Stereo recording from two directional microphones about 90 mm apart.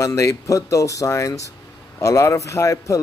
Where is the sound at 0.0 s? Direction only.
35° left (ahead or behind).